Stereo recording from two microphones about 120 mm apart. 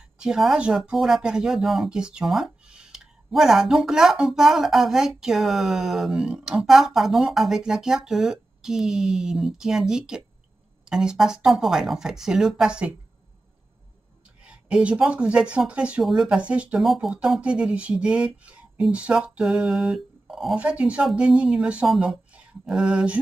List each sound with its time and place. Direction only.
0.0 s speech: 5° right (ahead or behind)
14.4 s speech: 10° right (ahead or behind)